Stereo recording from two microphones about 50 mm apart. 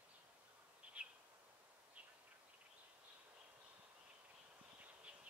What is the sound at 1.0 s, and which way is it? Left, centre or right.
Bird, right.